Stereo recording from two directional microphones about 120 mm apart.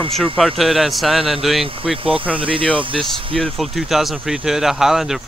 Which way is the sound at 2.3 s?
45° right (ahead or behind).